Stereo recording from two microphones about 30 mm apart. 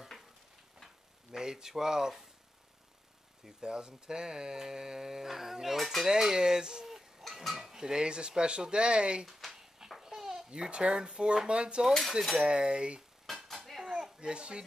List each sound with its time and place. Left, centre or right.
1.3 s a sound: centre
1.7 s speech: centre
3.6 s speech: right
6.9 s a sound: centre
7.4 s cutlery: centre
7.7 s speech: right
9.4 s a sound: centre
9.8 s babbling: centre
10.5 s speech: right
13.3 s cutlery: centre
13.9 s a sound: right
14.3 s speech: right